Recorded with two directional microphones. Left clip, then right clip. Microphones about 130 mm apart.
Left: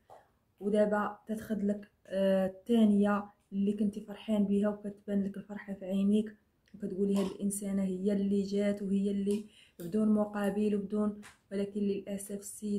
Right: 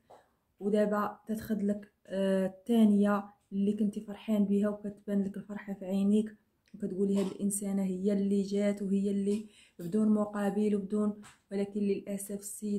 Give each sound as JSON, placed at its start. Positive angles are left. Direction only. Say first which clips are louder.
{"t": 0.7, "sound": "speech", "louder": "even", "side_deg": -35}